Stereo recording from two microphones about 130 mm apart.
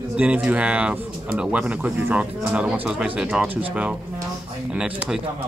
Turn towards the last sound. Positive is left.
turn(degrees=-5)  # may be behind; listen again after turning